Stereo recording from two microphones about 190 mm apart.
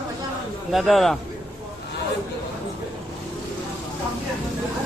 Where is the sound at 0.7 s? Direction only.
Centre (ahead or behind).